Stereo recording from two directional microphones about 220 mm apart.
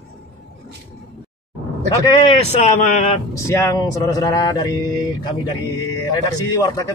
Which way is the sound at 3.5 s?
15° left (ahead or behind).